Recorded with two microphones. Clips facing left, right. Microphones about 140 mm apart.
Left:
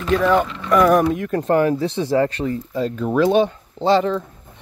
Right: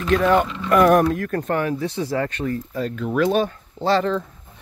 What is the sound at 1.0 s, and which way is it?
Speech, 15° left (ahead or behind).